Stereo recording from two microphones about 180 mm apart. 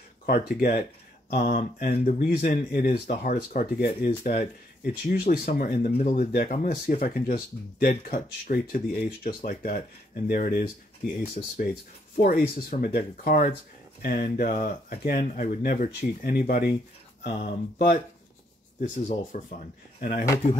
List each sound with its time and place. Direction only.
0.3 s speech: 55° left (ahead or behind)
11.4 s speech: 40° left (ahead or behind)
12.2 s speech: 55° left (ahead or behind)